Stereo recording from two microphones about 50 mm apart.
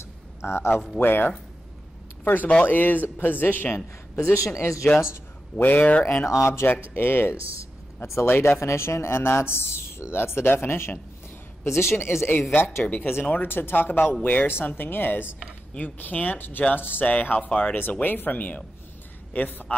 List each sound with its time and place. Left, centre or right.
0.0 s a sound: left
0.9 s speech: left
4.2 s speech: left
5.6 s speech: left
6.2 s speech: left
7.0 s speech: left
8.0 s speech: left
14.2 s speech: left
17.0 s speech: left